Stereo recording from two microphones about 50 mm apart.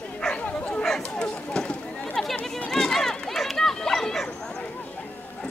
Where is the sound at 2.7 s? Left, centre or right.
Centre.